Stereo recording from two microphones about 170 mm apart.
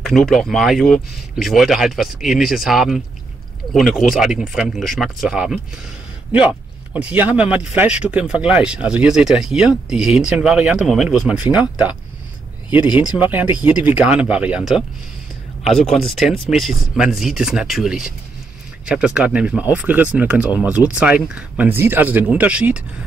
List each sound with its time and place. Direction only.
0.0 s speech: centre (ahead or behind)
12.7 s speech: 10° right (ahead or behind)